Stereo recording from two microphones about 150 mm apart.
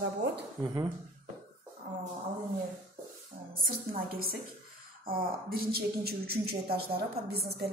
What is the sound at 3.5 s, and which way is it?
A woman's voice, 75° right (ahead or behind).